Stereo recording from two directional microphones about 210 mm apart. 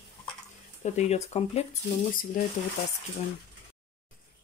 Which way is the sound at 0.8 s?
30° left (ahead or behind).